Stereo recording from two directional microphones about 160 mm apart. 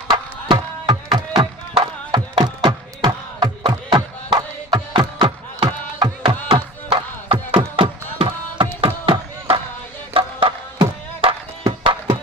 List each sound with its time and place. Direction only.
0.1 s music: 25° right (ahead or behind)
8.8 s a sound: 35° right (ahead or behind)
10.1 s music: 35° right (ahead or behind)